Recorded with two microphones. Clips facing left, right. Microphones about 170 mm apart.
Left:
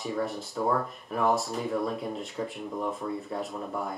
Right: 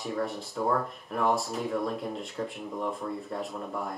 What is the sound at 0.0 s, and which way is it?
Speech, centre (ahead or behind).